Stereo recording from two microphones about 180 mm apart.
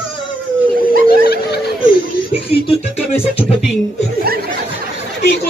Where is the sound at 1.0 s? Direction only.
60° left (ahead or behind).